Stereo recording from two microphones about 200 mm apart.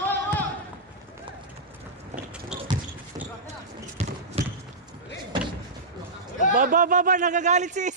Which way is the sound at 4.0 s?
35° right (ahead or behind).